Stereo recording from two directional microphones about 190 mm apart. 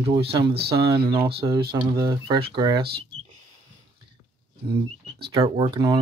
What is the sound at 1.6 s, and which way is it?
Speech, 25° right (ahead or behind).